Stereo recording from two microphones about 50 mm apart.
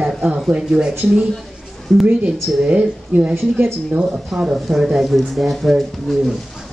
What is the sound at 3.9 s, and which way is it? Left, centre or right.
Speech, right.